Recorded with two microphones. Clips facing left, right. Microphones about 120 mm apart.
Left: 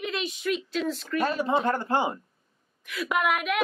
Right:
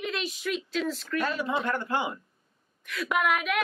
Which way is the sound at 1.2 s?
35° left (ahead or behind).